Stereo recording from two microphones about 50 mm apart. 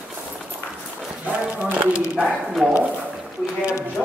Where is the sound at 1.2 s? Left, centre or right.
Right.